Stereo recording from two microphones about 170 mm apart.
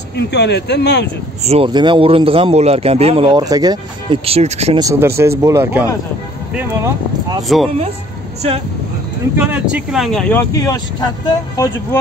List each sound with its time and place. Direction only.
0.1 s speech: 80° left
1.4 s a man's voice: 35° right (ahead or behind)
4.3 s a man's voice: 40° right (ahead or behind)
4.7 s speech: 20° right (ahead or behind)
7.4 s speech: centre (ahead or behind)
9.4 s speech: 10° right (ahead or behind)
10.5 s speech: 20° left (ahead or behind)